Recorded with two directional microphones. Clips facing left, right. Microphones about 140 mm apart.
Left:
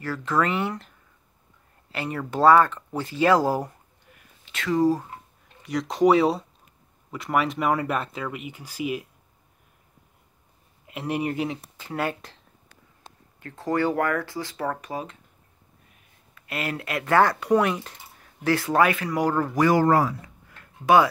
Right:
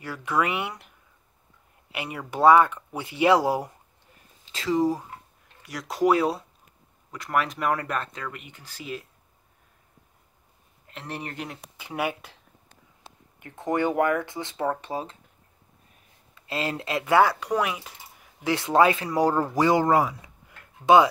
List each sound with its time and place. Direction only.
0.0 s speech: 15° right (ahead or behind)
4.1 s a sound: 30° right (ahead or behind)
4.7 s speech: 15° right (ahead or behind)
5.6 s speech: centre (ahead or behind)
10.9 s speech: 10° left (ahead or behind)
11.4 s speech: centre (ahead or behind)
11.8 s speech: 10° right (ahead or behind)
13.4 s speech: 20° right (ahead or behind)
16.3 s speech: 25° right (ahead or behind)
17.0 s speech: 5° right (ahead or behind)
18.4 s speech: 20° right (ahead or behind)